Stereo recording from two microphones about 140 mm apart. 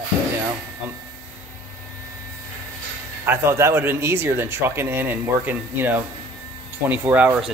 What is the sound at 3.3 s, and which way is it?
Speech, 20° right (ahead or behind).